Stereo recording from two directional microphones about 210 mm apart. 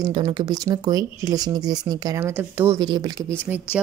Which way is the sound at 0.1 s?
20° right (ahead or behind).